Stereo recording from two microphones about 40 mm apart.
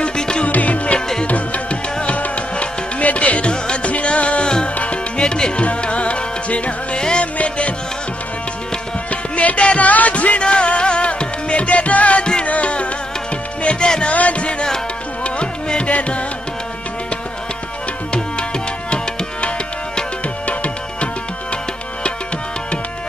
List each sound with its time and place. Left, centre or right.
0.0 s music: left
0.5 s music: left
0.9 s music: centre
1.2 s music: left
7.0 s music: left
7.3 s music: left
9.1 s music: left
10.4 s music: left
20.4 s music: left